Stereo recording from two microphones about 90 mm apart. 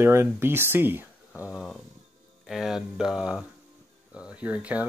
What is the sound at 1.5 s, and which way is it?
Speech, centre (ahead or behind).